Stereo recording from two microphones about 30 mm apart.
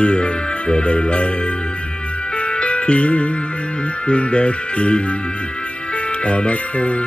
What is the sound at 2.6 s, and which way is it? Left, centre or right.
Music, left.